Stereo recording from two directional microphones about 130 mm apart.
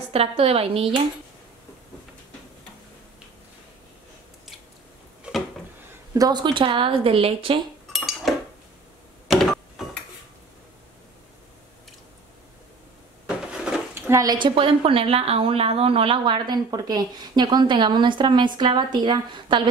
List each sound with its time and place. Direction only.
0.1 s a woman's voice: 50° right (ahead or behind)
6.1 s a woman's voice: 30° right (ahead or behind)
7.9 s dishes: centre (ahead or behind)
9.3 s a sound: centre (ahead or behind)
14.0 s a woman's voice: 25° right (ahead or behind)